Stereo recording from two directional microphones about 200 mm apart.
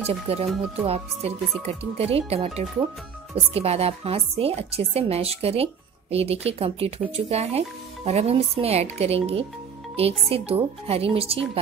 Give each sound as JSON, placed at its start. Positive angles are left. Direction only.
{"t": 0.0, "sound": "a woman's voice", "side_deg": -30}